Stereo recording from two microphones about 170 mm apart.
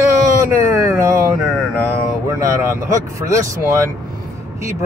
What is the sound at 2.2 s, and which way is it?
Speech, 15° right (ahead or behind).